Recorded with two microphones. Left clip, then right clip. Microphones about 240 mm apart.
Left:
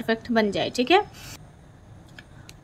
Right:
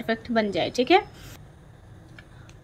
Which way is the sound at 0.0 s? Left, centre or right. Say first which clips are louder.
Left 2 dB; centre.